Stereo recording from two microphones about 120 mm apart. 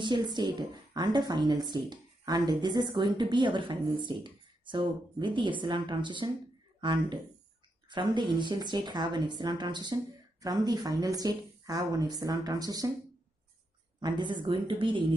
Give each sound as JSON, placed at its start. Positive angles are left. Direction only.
{"t": 0.0, "sound": "a woman's voice", "side_deg": -40}
{"t": 13.9, "sound": "a woman's voice", "side_deg": -40}